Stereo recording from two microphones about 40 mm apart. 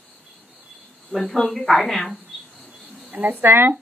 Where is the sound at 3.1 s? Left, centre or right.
Right.